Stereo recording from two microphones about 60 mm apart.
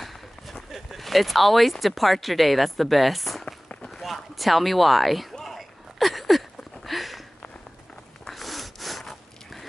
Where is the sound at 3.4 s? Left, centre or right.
Centre.